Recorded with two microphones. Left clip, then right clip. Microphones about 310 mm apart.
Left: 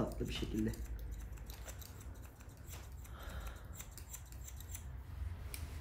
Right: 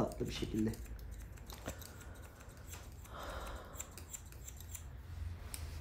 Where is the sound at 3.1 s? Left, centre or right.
Centre.